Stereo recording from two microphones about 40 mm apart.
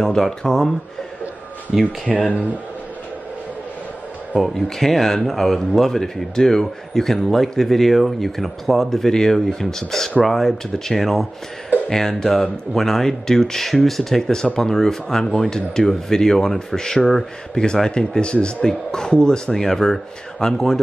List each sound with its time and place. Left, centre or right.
0.0 s speech: centre
1.7 s speech: centre
4.4 s speech: centre